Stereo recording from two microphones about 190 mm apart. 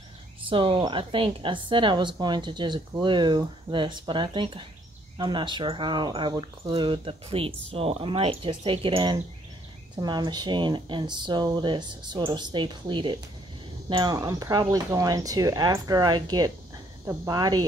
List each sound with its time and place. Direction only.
0.5 s a woman's voice: 25° right (ahead or behind)